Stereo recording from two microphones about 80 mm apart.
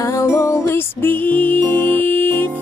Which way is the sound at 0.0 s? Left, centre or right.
Left.